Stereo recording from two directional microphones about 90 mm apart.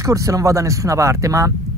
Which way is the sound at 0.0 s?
40° right (ahead or behind).